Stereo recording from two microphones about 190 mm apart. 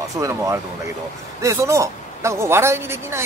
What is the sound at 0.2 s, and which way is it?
A woman's voice, 15° right (ahead or behind).